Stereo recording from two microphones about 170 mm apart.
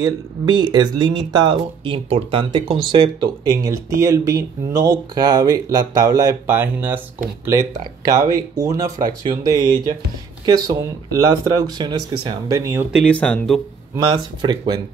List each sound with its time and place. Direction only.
0.0 s speech: 25° right (ahead or behind)
12.9 s speech: 5° left (ahead or behind)
14.0 s speech: 25° right (ahead or behind)